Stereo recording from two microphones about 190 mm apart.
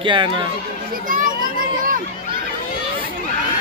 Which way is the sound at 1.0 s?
45° right (ahead or behind).